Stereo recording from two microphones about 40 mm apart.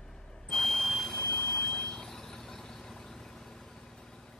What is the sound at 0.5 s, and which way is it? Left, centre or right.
Vehicle, centre.